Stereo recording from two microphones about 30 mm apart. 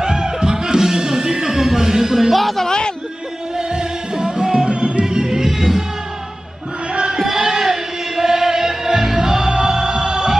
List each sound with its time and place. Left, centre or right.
0.0 s music: right
2.3 s speech: centre
2.6 s a sound: left
3.5 s music: right
4.7 s music: right
5.0 s music: right
6.9 s music: right
7.3 s music: centre